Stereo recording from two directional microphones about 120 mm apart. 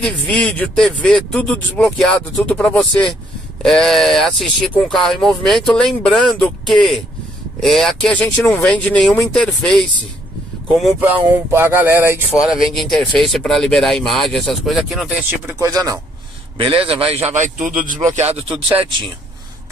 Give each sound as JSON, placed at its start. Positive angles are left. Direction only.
{"t": 0.0, "sound": "speech", "side_deg": 5}
{"t": 11.5, "sound": "speech", "side_deg": -20}
{"t": 12.4, "sound": "speech", "side_deg": -5}
{"t": 15.6, "sound": "speech", "side_deg": -30}
{"t": 16.5, "sound": "a man's voice", "side_deg": -50}
{"t": 18.5, "sound": "speech", "side_deg": -45}